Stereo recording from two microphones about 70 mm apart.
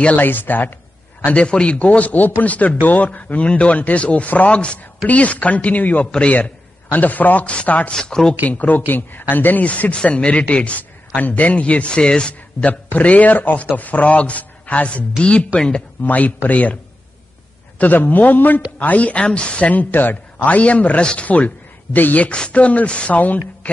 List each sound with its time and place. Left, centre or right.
0.0 s a man's voice: left
7.9 s speech: centre
8.5 s a man's voice: left
17.7 s a man's voice: left